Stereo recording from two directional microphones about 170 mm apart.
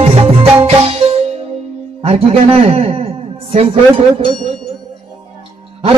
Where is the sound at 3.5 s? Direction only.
35° right (ahead or behind).